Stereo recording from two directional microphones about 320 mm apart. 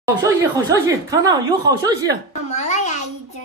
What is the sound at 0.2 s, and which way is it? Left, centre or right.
Speech, centre.